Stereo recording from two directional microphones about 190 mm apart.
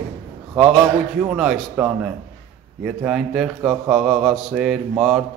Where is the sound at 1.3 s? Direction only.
5° right (ahead or behind).